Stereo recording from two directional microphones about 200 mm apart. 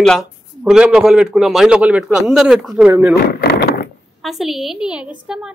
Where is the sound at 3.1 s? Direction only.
50° left (ahead or behind).